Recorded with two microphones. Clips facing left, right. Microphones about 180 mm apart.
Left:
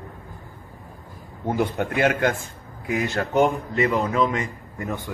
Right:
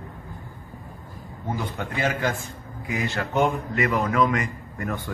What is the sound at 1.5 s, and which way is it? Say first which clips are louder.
Speech: left 8 dB; 60° left (ahead or behind).